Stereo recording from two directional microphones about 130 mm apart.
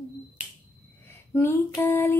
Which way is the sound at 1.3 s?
20° left (ahead or behind).